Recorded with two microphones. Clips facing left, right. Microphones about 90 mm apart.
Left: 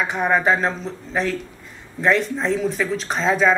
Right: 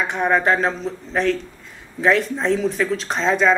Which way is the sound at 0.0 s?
Centre (ahead or behind).